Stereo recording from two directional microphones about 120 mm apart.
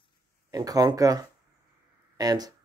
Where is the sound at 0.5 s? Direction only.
30° right (ahead or behind).